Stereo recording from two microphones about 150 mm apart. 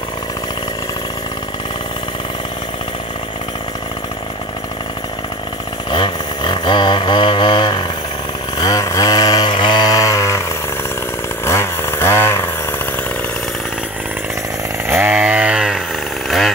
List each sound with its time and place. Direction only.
5.9 s a sound: 35° left (ahead or behind)
8.5 s mantra: 25° left (ahead or behind)
11.4 s chainsaw: 15° left (ahead or behind)
14.9 s chainsaw: 15° right (ahead or behind)
16.3 s jackhammer: centre (ahead or behind)